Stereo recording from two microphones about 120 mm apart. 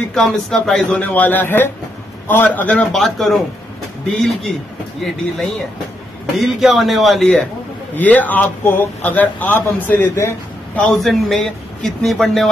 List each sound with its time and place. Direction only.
0.1 s a man's voice: 5° left (ahead or behind)
6.3 s a man's voice: centre (ahead or behind)
7.9 s speech: 15° left (ahead or behind)
10.8 s a man's voice: 5° left (ahead or behind)